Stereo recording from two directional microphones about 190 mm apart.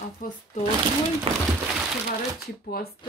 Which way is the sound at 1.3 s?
35° right (ahead or behind).